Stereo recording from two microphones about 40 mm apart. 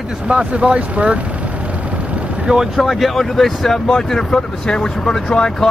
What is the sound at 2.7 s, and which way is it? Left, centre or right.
Speech, centre.